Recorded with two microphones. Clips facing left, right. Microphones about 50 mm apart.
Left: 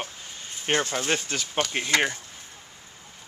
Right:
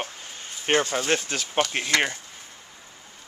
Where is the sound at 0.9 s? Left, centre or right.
Centre.